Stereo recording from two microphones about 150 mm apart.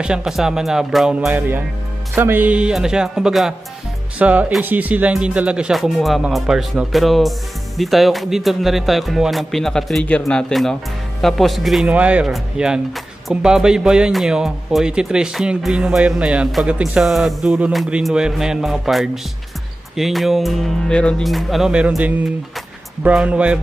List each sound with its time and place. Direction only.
0.0 s speech: 5° right (ahead or behind)